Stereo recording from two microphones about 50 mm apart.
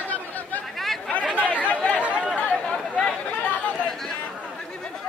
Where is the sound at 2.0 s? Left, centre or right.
Right.